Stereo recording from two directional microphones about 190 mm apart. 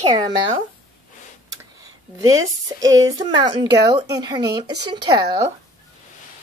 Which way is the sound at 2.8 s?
90° right.